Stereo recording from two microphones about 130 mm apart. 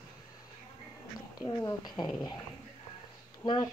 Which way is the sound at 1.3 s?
30° left (ahead or behind).